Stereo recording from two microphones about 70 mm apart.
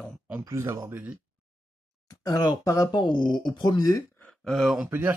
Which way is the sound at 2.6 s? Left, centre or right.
Left.